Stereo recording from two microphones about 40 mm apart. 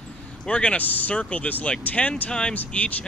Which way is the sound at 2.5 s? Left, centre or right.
Left.